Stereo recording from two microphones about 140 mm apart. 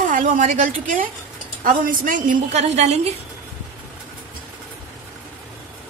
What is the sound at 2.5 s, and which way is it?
Speech, 50° right (ahead or behind).